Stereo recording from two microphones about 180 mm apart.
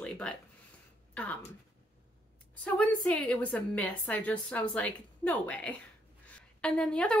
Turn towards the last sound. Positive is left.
turn(degrees=5)  # may be behind; listen again after turning